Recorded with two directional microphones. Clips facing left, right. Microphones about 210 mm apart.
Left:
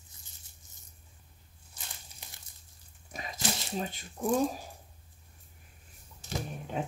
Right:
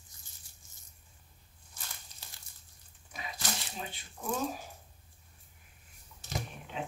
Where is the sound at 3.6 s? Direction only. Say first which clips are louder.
Left 8 dB; 45° left (ahead or behind).